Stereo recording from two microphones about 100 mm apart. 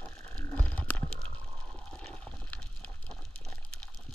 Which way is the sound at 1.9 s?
5° left (ahead or behind).